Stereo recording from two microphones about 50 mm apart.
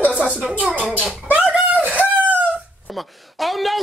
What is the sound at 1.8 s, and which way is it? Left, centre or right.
Chicken, right.